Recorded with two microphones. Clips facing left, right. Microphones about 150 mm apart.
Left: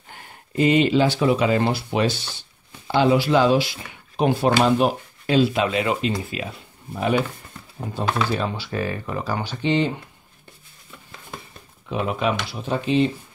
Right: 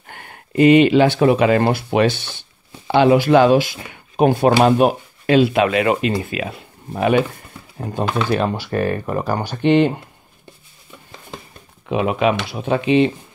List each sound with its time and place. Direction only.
0.1 s speech: 70° right (ahead or behind)
8.3 s speech: 60° right (ahead or behind)
11.9 s speech: 75° right (ahead or behind)
12.4 s speech: 60° right (ahead or behind)